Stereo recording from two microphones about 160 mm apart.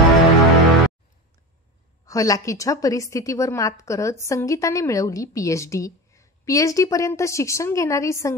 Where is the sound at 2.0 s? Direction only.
20° left (ahead or behind).